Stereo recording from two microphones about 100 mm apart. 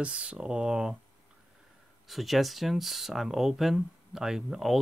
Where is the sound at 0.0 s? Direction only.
10° right (ahead or behind).